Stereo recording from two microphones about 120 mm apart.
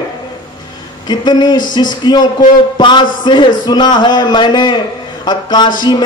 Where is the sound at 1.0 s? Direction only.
35° left (ahead or behind).